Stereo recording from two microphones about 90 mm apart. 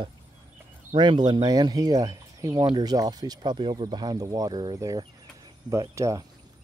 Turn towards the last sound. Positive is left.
turn(degrees=-40)  # may be behind; listen again after turning